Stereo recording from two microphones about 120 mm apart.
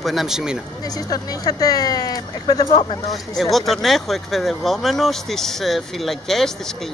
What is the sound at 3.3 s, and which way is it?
Speech, centre (ahead or behind).